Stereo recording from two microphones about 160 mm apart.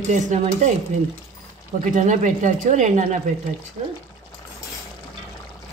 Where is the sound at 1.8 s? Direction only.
50° right (ahead or behind).